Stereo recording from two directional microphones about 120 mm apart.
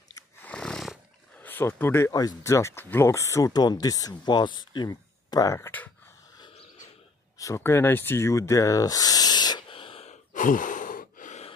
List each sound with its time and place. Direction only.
0.4 s neigh: 10° left (ahead or behind)
1.4 s speech: 15° left (ahead or behind)
7.3 s speech: 25° left (ahead or behind)
9.7 s a sound: 50° left (ahead or behind)
10.3 s gasp: 90° left